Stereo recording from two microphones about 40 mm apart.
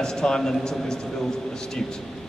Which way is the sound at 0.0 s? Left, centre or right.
Centre.